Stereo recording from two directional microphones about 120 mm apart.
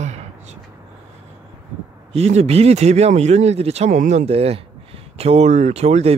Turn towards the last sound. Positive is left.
turn(degrees=-60)  # may be behind; listen again after turning